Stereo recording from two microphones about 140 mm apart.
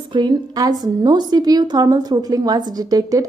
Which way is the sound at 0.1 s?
30° right (ahead or behind).